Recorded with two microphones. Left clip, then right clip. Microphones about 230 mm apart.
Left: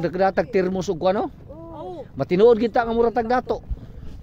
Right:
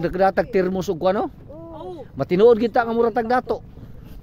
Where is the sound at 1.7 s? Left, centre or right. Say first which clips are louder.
Left 1 dB; right.